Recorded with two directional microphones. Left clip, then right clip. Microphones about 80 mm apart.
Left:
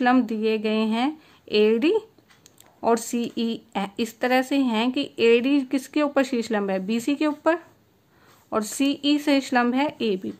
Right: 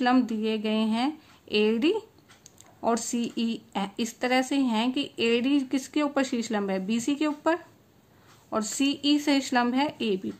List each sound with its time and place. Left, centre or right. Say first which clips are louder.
0.0 s speech: left 4 dB; left